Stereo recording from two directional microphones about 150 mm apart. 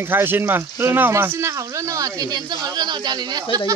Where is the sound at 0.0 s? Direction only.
15° right (ahead or behind).